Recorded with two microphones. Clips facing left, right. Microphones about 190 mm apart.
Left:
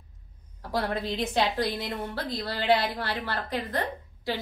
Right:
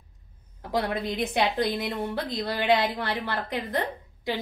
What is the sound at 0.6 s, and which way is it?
A woman's voice, 20° right (ahead or behind).